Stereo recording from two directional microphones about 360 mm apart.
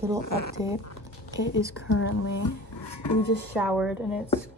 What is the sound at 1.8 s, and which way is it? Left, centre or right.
Speech, left.